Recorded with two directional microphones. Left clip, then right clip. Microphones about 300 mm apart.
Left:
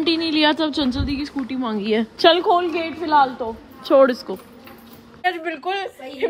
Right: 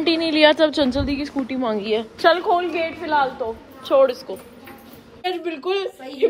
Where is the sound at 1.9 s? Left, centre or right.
Left.